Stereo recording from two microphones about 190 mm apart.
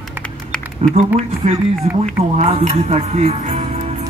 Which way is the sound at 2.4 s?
30° right (ahead or behind).